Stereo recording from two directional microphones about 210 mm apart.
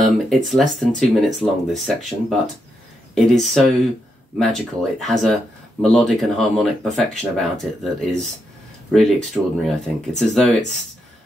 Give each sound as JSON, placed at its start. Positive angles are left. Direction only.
{"t": 0.0, "sound": "speech", "side_deg": 0}
{"t": 3.3, "sound": "speech", "side_deg": 0}